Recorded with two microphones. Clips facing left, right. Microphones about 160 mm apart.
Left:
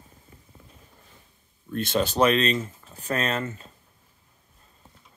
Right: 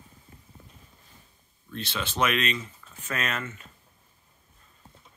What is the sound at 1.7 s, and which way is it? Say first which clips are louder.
Speech: left 9 dB; 45° left (ahead or behind).